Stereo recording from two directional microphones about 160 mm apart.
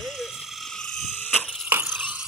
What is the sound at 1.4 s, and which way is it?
Crushing, 10° right (ahead or behind).